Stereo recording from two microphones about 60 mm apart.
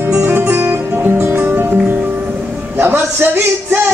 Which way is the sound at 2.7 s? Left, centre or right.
Right.